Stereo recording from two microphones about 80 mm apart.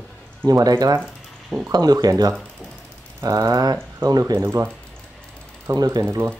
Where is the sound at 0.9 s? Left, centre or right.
Right.